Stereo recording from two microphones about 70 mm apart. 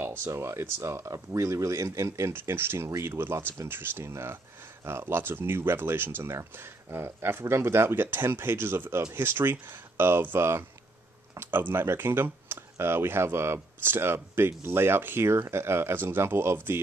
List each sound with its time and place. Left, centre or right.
0.0 s speech: right
2.3 s speech: right